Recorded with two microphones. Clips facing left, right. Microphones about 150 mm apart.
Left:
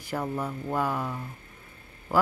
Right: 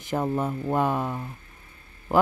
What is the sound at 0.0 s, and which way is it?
A woman's voice, 20° right (ahead or behind).